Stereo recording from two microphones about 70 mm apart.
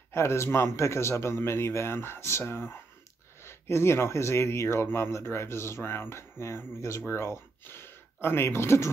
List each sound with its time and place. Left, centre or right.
0.1 s speech: left